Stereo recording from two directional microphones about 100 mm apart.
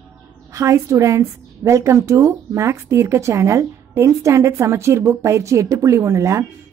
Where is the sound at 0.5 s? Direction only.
30° right (ahead or behind).